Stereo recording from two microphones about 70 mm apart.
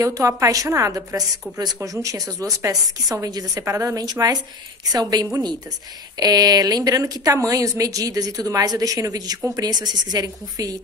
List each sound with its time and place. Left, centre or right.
0.0 s a woman's voice: right
0.7 s a woman's voice: right
3.6 s a woman's voice: right
4.0 s a woman's voice: right
9.6 s a woman's voice: right